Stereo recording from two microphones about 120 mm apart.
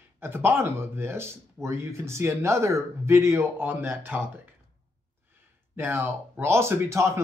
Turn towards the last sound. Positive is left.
turn(degrees=-25)  # may be behind; listen again after turning